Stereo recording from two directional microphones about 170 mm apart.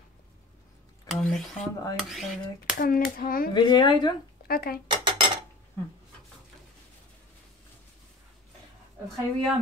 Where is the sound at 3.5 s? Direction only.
25° left (ahead or behind).